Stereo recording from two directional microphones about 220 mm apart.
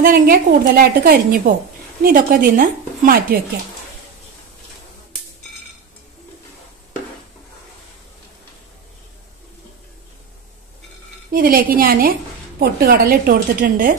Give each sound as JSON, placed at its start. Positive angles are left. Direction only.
{"t": 0.0, "sound": "a woman's voice", "side_deg": -40}
{"t": 11.3, "sound": "a woman's voice", "side_deg": -40}